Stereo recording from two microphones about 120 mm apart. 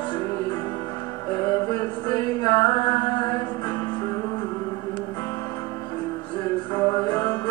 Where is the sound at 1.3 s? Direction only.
25° left (ahead or behind).